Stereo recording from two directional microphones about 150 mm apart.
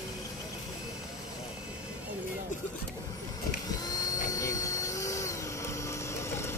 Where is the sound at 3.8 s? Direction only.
25° left (ahead or behind).